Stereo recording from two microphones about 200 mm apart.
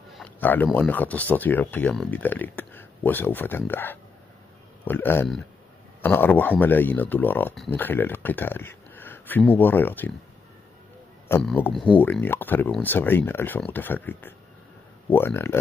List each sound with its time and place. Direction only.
0.1 s a sound: 5° left (ahead or behind)
0.7 s speech: 5° left (ahead or behind)
11.2 s speech: 10° left (ahead or behind)